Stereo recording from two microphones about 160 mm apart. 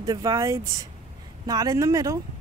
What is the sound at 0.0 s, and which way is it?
Speech, 20° right (ahead or behind).